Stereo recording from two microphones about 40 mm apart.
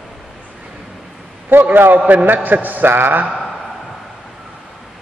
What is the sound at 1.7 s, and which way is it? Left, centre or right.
Speech, right.